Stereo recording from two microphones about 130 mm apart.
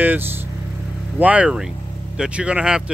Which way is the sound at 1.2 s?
10° right (ahead or behind).